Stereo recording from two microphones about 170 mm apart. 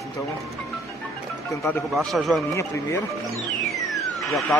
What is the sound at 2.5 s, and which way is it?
Speech, 15° left (ahead or behind).